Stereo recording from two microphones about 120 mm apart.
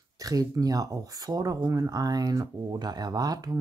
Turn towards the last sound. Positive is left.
turn(degrees=-30)  # may be behind; listen again after turning